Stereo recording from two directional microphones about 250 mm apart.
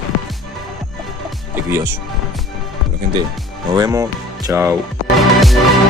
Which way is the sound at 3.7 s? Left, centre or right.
Centre.